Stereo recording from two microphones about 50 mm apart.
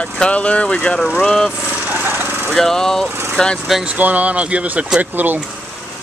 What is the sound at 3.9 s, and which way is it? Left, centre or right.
Speech, right.